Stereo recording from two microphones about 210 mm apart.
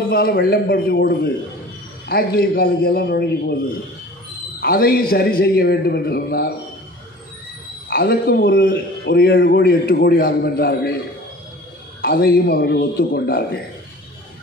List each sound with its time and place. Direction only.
0.1 s speech: 45° left (ahead or behind)
4.6 s speech: 45° left (ahead or behind)
7.9 s speech: 45° left (ahead or behind)
12.0 s speech: 45° left (ahead or behind)